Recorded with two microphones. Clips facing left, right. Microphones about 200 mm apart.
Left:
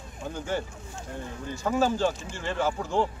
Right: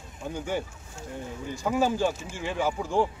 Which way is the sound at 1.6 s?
10° right (ahead or behind).